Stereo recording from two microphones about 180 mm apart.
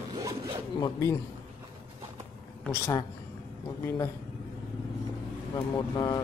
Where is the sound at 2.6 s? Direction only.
15° left (ahead or behind).